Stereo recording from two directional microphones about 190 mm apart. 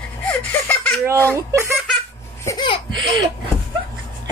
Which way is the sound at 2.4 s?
20° left (ahead or behind).